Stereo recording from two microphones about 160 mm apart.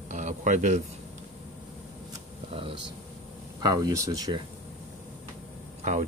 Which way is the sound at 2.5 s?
35° right (ahead or behind).